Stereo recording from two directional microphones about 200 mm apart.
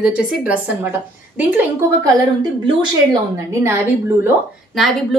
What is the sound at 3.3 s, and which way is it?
Speech, 15° right (ahead or behind).